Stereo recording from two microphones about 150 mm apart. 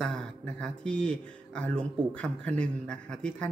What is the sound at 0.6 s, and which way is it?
Speech, 5° left (ahead or behind).